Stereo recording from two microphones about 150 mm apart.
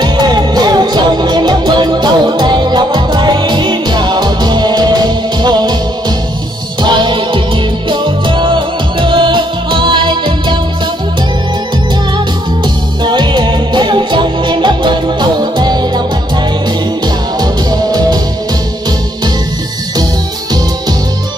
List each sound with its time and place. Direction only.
0.0 s music: 30° right (ahead or behind)
12.6 s music: 30° right (ahead or behind)
17.0 s music: 25° right (ahead or behind)